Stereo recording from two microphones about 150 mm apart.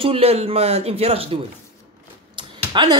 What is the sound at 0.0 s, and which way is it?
Speech, 40° right (ahead or behind).